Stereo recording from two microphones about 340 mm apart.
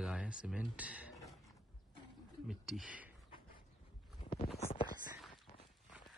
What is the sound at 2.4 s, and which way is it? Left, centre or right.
Speech, centre.